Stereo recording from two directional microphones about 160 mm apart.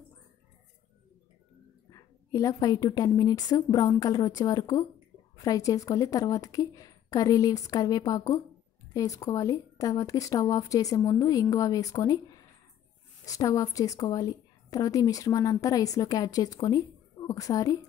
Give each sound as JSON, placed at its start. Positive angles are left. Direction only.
{"t": 1.9, "sound": "a woman's voice", "side_deg": 20}